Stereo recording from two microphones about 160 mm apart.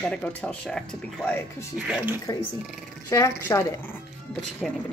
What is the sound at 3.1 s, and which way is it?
Speech, 20° left (ahead or behind).